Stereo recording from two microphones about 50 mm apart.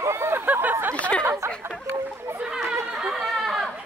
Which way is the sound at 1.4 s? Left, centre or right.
Right.